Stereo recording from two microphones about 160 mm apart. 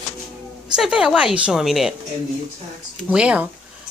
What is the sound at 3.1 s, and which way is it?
Speech, 5° right (ahead or behind).